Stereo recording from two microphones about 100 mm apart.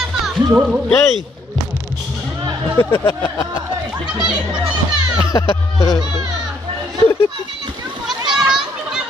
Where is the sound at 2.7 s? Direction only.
25° left (ahead or behind).